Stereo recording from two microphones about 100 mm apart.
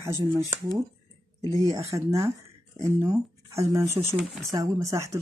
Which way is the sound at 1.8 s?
30° right (ahead or behind).